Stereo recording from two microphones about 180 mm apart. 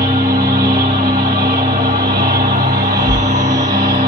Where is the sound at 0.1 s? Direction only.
55° right (ahead or behind).